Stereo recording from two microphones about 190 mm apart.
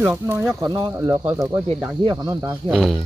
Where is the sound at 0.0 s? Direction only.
10° right (ahead or behind).